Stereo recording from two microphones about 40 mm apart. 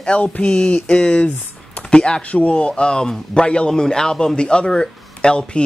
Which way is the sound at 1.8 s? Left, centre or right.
Left.